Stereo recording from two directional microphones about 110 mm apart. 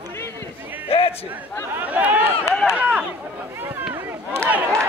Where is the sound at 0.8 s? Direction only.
60° left (ahead or behind).